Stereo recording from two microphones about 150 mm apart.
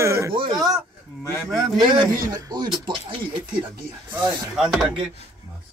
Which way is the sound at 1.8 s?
30° right (ahead or behind).